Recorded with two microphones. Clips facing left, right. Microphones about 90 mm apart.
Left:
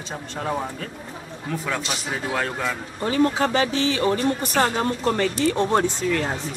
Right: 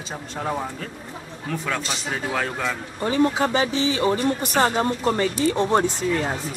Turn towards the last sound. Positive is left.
turn(degrees=-15)  # may be behind; listen again after turning